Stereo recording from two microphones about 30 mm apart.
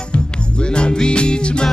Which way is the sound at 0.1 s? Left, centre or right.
Left.